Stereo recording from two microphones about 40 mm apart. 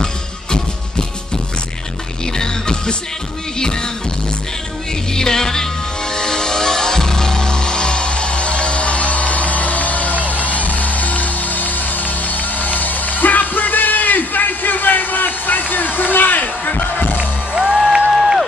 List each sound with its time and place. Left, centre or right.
0.0 s music: left
2.3 s music: centre
5.1 s music: centre; by 17.2 s left
17.6 s music: centre
18.1 s a sound: centre